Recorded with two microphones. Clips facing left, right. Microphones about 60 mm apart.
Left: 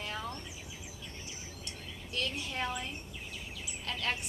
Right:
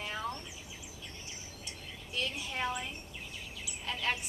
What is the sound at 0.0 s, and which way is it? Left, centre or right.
Bird, centre.